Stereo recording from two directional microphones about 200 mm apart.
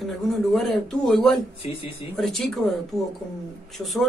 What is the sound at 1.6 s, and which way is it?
Speech, 25° left (ahead or behind).